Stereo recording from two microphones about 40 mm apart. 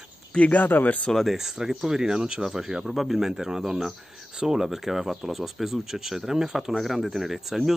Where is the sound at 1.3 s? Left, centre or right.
Centre.